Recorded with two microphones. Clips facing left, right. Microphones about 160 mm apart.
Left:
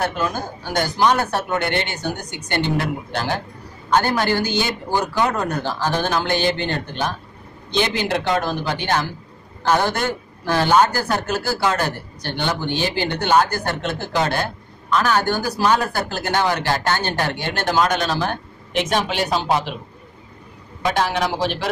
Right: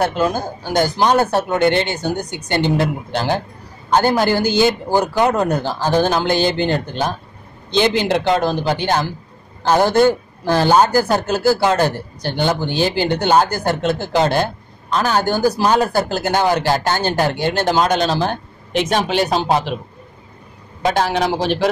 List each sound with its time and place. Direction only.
0.0 s speech: 30° right (ahead or behind)
20.8 s speech: 35° right (ahead or behind)